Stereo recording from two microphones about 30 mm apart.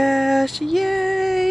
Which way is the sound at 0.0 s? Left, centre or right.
Centre.